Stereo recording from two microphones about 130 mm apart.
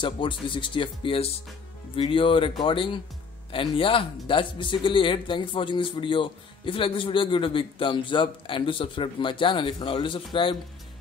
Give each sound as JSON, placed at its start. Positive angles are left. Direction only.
{"t": 0.0, "sound": "speech", "side_deg": 40}